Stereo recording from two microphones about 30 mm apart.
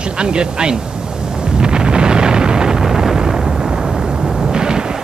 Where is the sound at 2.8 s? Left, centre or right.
Centre.